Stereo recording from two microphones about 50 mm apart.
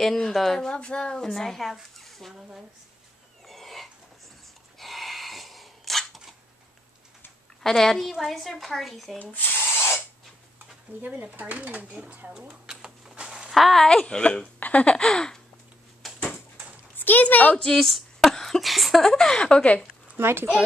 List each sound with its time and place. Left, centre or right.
0.0 s a woman's voice: centre
0.7 s speech: centre
3.4 s a sound: centre
7.6 s a woman's voice: centre
9.2 s spray: left
11.0 s speech: right
12.6 s a sound: centre
13.5 s speech: centre
13.8 s speech: centre
16.0 s a sound: centre
16.9 s speech: left
17.7 s a woman's voice: centre
19.4 s speech: left
20.2 s speech: right